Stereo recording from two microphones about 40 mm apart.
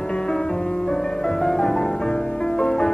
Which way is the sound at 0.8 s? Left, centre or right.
Centre.